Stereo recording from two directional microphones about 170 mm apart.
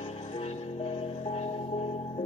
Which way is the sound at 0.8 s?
35° left (ahead or behind).